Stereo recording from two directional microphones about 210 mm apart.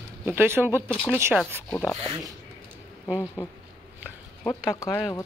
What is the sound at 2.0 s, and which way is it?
Speech, 25° right (ahead or behind).